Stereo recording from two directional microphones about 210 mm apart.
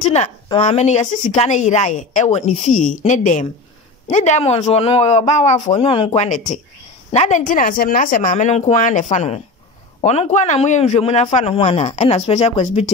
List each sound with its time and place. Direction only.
0.0 s a woman's voice: 30° left (ahead or behind)